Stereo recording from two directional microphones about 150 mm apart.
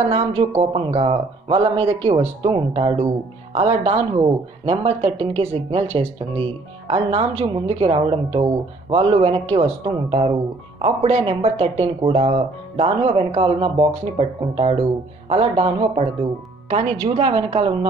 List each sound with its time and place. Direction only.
0.1 s speech: 40° right (ahead or behind)